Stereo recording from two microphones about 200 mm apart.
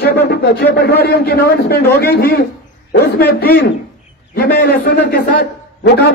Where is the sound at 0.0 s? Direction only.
55° left (ahead or behind).